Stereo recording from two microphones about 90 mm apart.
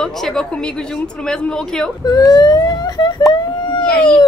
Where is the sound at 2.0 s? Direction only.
45° left (ahead or behind).